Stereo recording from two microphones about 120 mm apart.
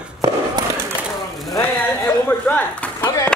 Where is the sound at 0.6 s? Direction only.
35° right (ahead or behind).